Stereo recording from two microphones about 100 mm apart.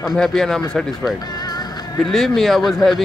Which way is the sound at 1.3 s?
40° left (ahead or behind).